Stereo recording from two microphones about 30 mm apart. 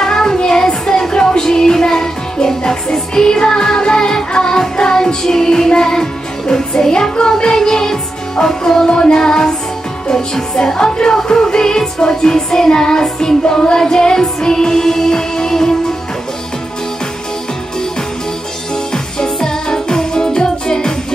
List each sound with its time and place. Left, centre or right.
0.0 s music: centre
8.8 s music: left
10.6 s music: left
19.1 s music: left